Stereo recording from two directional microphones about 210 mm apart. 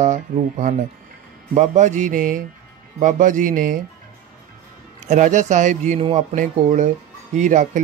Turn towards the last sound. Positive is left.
turn(degrees=-35)  # may be behind; listen again after turning